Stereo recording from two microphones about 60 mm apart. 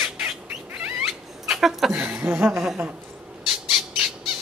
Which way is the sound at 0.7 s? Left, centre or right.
Right.